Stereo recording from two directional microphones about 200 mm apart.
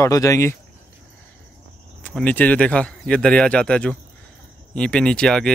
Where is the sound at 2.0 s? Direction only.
5° left (ahead or behind).